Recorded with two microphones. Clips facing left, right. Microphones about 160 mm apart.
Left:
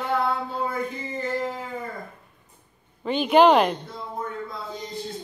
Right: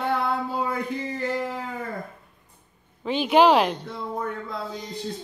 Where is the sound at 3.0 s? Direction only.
Centre (ahead or behind).